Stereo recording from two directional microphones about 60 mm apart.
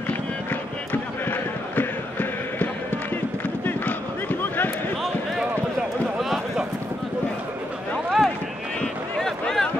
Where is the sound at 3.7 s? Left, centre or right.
Left.